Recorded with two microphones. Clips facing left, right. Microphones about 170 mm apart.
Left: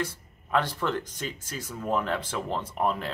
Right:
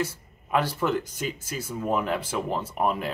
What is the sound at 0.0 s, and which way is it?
Speech, 10° right (ahead or behind).